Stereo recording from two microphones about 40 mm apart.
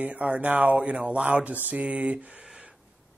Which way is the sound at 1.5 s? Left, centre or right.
Right.